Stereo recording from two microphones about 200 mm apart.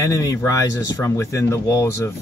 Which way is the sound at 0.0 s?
15° left (ahead or behind).